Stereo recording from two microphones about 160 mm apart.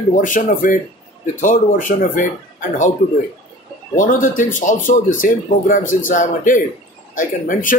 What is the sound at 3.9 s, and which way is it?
Speech, 55° left (ahead or behind).